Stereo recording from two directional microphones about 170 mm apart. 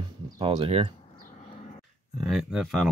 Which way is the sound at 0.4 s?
30° right (ahead or behind).